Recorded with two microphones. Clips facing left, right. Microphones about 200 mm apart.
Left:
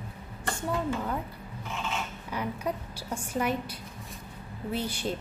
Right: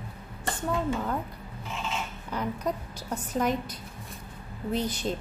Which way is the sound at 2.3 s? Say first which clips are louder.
Right 2 dB; 10° left (ahead or behind).